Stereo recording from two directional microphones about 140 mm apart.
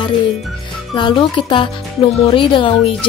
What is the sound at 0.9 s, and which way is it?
Speech, 35° left (ahead or behind).